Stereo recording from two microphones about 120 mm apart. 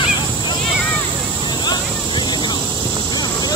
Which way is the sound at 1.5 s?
35° left (ahead or behind).